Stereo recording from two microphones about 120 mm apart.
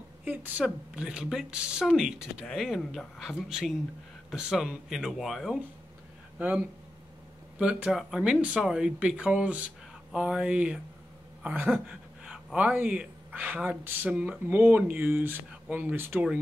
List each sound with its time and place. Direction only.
0.2 s speech: 15° right (ahead or behind)
6.3 s speech: 15° right (ahead or behind)
11.7 s gasp: centre (ahead or behind)
12.6 s speech: 15° right (ahead or behind)